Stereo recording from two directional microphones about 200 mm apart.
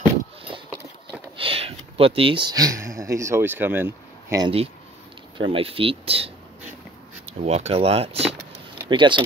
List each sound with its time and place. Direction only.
1.3 s a sound: 25° right (ahead or behind)
5.4 s speech: 25° right (ahead or behind)
7.3 s speech: 35° right (ahead or behind)